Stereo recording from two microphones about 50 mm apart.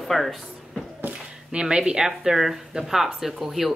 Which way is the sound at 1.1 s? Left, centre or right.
Centre.